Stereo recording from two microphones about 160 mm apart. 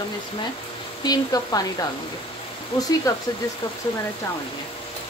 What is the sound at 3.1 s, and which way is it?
Speech, 20° left (ahead or behind).